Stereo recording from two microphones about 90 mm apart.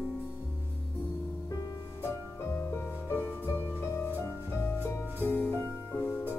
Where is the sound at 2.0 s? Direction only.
25° left (ahead or behind).